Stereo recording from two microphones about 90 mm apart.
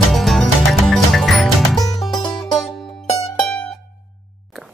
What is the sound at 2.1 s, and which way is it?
Music, 50° left (ahead or behind).